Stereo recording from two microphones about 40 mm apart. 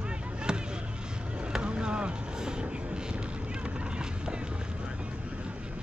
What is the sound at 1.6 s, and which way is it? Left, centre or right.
Vehicle, right.